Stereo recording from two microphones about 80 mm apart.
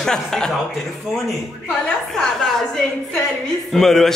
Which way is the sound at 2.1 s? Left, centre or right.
Centre.